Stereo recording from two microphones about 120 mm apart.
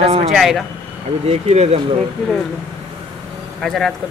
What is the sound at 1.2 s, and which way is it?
Speech, 60° right (ahead or behind).